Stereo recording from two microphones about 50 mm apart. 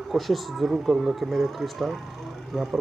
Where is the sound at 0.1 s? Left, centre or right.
Centre.